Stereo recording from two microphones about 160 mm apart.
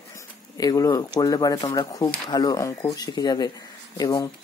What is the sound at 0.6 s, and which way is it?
Speech, 25° left (ahead or behind).